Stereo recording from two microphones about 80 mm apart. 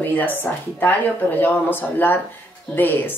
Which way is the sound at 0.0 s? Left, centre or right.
Left.